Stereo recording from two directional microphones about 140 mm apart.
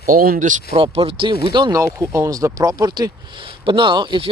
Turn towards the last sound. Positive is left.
turn(degrees=-35)  # may be behind; listen again after turning